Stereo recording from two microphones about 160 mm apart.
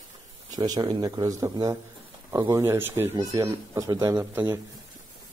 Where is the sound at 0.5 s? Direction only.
25° right (ahead or behind).